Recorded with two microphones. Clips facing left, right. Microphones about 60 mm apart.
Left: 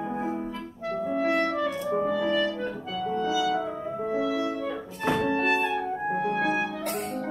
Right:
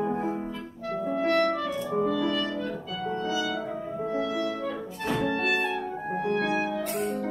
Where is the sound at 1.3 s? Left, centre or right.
Centre.